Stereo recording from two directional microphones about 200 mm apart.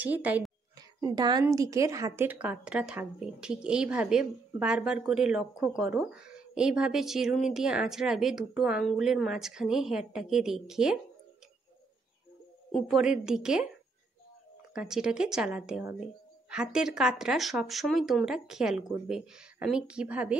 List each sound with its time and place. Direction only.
0.0 s a woman's voice: 10° right (ahead or behind)
12.7 s speech: centre (ahead or behind)
14.7 s speech: 5° right (ahead or behind)